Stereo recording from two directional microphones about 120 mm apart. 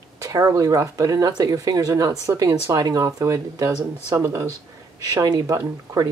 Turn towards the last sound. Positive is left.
turn(degrees=-25)  # may be behind; listen again after turning